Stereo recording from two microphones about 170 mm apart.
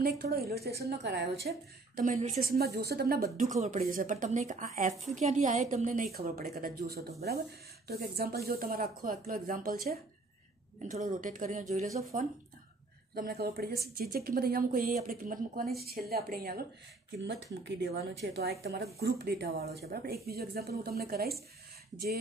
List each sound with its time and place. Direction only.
0.0 s a woman's voice: 60° right (ahead or behind)
2.0 s speech: 45° right (ahead or behind); by 3.3 s 65° right (ahead or behind)
3.8 s a woman's voice: 55° right (ahead or behind)
6.1 s a woman's voice: 60° right (ahead or behind)
10.9 s a woman's voice: 50° right (ahead or behind)
13.1 s speech: 65° right (ahead or behind)
15.8 s speech: 65° right (ahead or behind)
17.2 s a woman's voice: 90° right; by 21.4 s 65° right (ahead or behind)